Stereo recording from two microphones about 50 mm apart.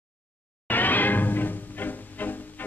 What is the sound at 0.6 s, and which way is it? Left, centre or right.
Music, left.